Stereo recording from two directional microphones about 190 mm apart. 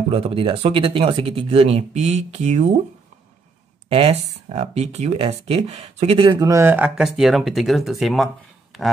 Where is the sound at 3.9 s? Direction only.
30° right (ahead or behind); by 8.3 s centre (ahead or behind).